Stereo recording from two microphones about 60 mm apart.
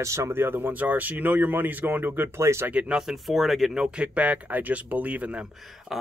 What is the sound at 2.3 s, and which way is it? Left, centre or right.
Speech, right.